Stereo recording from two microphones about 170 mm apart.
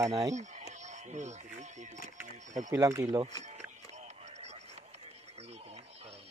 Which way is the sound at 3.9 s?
40° right (ahead or behind).